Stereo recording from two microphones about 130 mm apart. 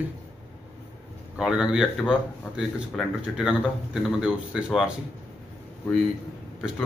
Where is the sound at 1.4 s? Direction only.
5° right (ahead or behind).